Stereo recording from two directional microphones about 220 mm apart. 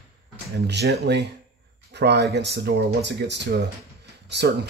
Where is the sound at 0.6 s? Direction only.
50° right (ahead or behind).